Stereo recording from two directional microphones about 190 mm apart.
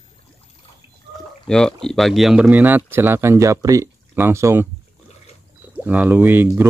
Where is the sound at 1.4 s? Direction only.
5° left (ahead or behind); by 4.7 s 15° right (ahead or behind).